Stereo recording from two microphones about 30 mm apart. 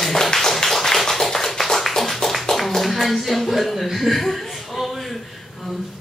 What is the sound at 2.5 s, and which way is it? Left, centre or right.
Clapping, centre.